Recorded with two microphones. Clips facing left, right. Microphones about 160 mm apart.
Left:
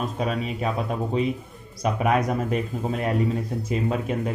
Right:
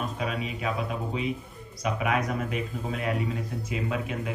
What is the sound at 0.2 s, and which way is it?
Speech, 35° left (ahead or behind).